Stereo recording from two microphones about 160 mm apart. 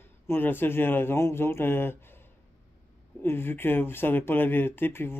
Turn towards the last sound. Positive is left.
turn(degrees=15)  # may be behind; listen again after turning